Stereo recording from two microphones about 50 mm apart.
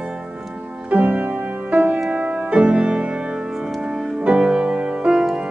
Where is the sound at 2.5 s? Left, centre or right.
Centre.